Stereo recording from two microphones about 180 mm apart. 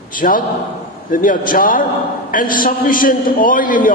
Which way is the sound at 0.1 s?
50° left (ahead or behind).